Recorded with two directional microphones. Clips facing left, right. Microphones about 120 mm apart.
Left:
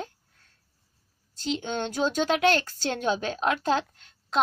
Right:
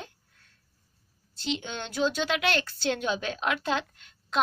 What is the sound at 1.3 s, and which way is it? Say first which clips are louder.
A woman's voice: left 4 dB; 40° left (ahead or behind).